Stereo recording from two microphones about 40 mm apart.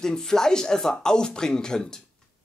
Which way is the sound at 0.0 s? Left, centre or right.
Centre.